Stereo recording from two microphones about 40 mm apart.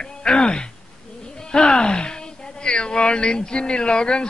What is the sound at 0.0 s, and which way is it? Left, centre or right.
Speech, centre.